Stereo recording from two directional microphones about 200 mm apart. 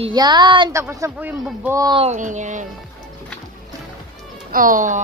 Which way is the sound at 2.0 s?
35° right (ahead or behind).